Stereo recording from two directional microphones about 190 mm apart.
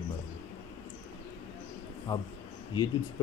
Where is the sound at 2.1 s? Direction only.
20° left (ahead or behind).